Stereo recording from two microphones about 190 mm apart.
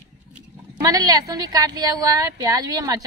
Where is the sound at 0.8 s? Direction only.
20° right (ahead or behind).